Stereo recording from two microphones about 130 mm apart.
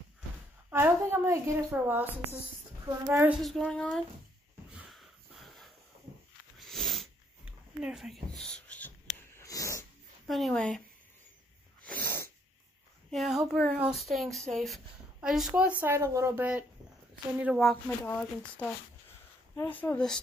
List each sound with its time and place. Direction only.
0.7 s a woman's voice: 15° right (ahead or behind)
3.1 s speech: 20° right (ahead or behind)
3.4 s speech: 5° left (ahead or behind)
4.7 s snort: centre (ahead or behind)
6.6 s sneeze: centre (ahead or behind)
7.4 s a sound: 5° right (ahead or behind); by 8.9 s 10° left (ahead or behind)
9.4 s a sound: 25° left (ahead or behind)
10.2 s speech: centre (ahead or behind)
11.8 s sneeze: 15° left (ahead or behind)
13.1 s speech: centre (ahead or behind)
15.8 s speech: 20° right (ahead or behind)
17.3 s a woman's voice: 10° right (ahead or behind)
17.8 s speech: 15° left (ahead or behind)